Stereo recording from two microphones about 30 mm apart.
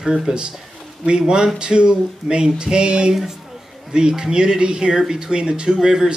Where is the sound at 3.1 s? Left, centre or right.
Centre.